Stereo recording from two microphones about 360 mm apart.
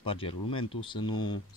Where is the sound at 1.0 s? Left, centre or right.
Left.